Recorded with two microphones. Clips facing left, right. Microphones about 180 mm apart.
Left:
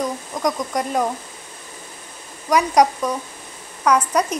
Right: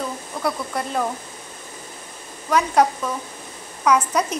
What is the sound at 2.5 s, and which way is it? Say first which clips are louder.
Speech: left 2 dB; 15° left (ahead or behind).